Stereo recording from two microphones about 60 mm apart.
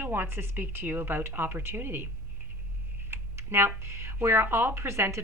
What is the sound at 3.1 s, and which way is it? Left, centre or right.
Speech, right.